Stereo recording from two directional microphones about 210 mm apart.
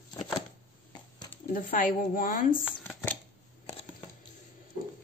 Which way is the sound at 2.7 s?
5° left (ahead or behind).